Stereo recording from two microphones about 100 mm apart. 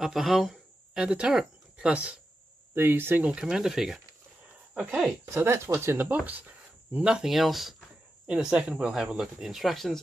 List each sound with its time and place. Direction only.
0.0 s speech: 5° right (ahead or behind)
5.3 s speech: 25° right (ahead or behind); by 9.9 s centre (ahead or behind)